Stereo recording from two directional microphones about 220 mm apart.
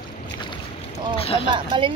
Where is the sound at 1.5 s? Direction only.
20° right (ahead or behind).